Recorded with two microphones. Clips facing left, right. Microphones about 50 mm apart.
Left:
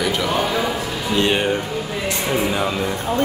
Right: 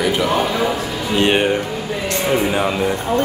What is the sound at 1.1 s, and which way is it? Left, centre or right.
Speech, right.